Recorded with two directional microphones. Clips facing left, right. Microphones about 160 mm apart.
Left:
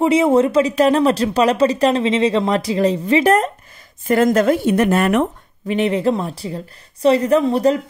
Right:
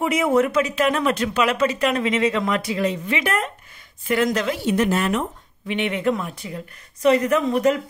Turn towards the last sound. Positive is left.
turn(degrees=35)  # may be behind; listen again after turning